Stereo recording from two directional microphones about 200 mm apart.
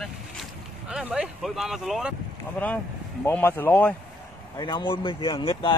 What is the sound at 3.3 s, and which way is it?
Speech, 10° left (ahead or behind).